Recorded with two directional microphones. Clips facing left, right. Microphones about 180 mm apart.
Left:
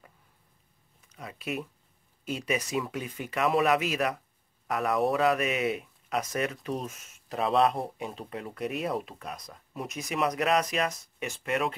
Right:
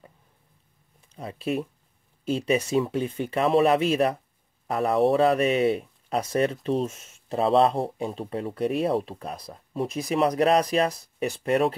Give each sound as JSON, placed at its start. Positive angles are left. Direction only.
{"t": 1.0, "sound": "speech", "side_deg": -30}